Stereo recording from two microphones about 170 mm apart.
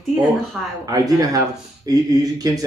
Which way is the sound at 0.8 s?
20° right (ahead or behind).